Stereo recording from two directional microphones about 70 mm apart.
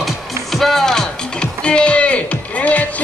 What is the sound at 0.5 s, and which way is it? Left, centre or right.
Music, centre.